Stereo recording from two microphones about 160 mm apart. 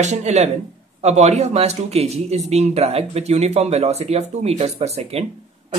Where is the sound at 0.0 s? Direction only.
45° right (ahead or behind).